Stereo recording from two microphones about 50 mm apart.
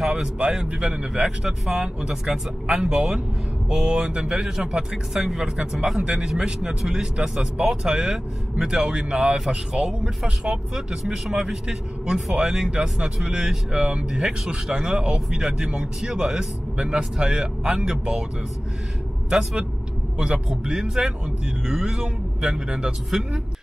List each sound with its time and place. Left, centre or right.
0.1 s speech: centre
5.6 s speech: right
20.2 s speech: centre